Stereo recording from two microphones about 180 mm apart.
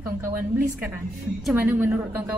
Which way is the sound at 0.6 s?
5° right (ahead or behind).